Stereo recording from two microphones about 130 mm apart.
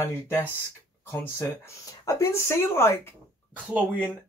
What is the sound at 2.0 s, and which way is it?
Speech, 25° left (ahead or behind).